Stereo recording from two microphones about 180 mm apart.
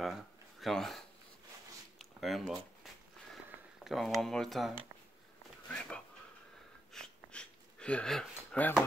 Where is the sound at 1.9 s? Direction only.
Centre (ahead or behind).